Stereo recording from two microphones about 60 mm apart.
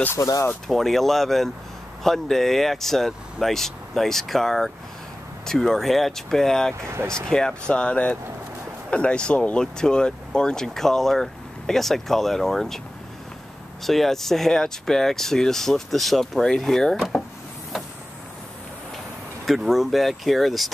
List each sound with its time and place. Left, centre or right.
0.2 s speech: left
0.7 s speech: centre
13.8 s speech: centre
19.4 s speech: centre